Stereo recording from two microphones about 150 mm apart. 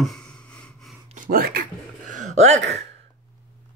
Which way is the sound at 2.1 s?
55° right (ahead or behind).